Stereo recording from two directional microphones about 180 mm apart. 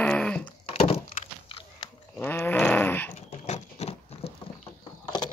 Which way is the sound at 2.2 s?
10° left (ahead or behind).